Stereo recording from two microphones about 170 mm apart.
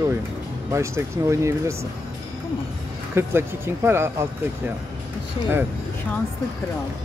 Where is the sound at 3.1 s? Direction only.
15° right (ahead or behind).